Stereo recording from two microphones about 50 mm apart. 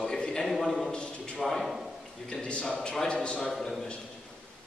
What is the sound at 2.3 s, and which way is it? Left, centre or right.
Speech, left.